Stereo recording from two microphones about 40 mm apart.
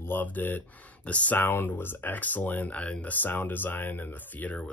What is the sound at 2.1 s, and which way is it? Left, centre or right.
Speech, left.